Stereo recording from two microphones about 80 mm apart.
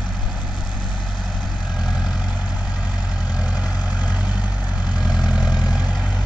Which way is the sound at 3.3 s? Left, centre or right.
Centre.